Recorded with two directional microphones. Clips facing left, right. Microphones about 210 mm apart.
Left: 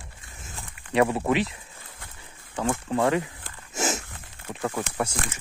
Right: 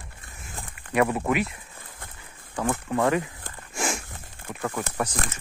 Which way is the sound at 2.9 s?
20° left (ahead or behind).